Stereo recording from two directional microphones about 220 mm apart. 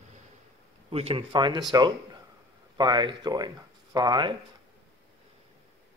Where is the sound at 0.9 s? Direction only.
25° right (ahead or behind).